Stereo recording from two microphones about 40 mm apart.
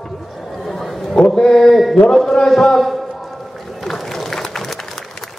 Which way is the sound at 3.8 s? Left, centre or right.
Centre.